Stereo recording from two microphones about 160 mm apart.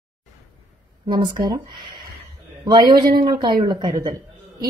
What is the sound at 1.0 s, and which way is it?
A woman's voice, 30° right (ahead or behind).